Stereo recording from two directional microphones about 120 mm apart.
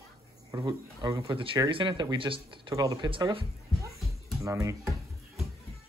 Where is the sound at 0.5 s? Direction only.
30° right (ahead or behind).